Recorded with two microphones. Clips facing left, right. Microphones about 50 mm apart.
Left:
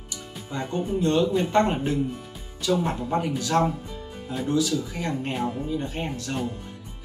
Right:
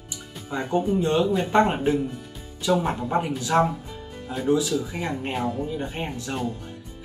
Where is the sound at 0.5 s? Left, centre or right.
Centre.